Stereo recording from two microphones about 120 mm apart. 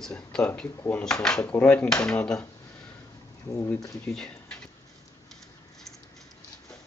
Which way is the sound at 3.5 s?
25° left (ahead or behind).